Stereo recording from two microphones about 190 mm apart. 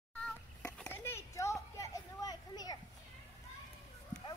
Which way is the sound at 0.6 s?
5° left (ahead or behind).